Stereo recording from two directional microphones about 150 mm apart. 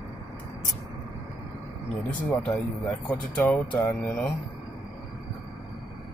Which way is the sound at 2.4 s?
10° left (ahead or behind).